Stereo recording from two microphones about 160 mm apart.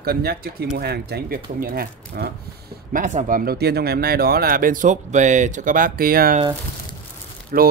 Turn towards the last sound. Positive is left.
turn(degrees=-70)  # may be behind; listen again after turning